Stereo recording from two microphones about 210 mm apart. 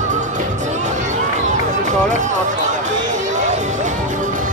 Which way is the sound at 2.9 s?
35° right (ahead or behind).